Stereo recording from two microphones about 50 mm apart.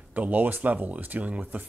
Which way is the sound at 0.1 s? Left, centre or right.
Right.